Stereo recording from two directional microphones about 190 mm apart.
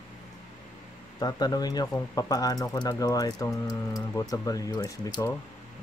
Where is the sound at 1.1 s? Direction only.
20° left (ahead or behind).